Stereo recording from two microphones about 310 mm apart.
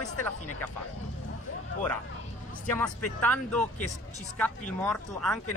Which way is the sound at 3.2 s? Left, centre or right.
Centre.